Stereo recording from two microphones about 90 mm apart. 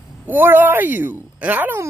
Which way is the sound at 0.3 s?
25° right (ahead or behind).